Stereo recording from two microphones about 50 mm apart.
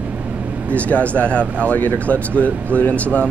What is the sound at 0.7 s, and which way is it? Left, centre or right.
Speech, left.